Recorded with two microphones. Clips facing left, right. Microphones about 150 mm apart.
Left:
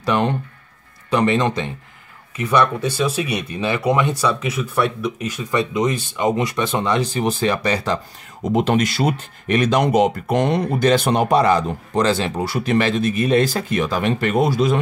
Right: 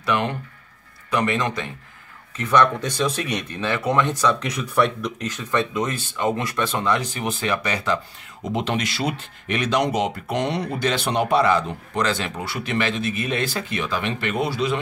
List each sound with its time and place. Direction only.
0.0 s speech: 35° left (ahead or behind)
2.3 s speech: 10° left (ahead or behind); by 8.0 s 35° left (ahead or behind)
8.5 s speech: 45° left (ahead or behind)